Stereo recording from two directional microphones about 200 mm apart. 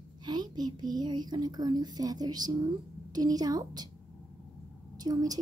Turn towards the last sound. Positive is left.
turn(degrees=-20)  # may be behind; listen again after turning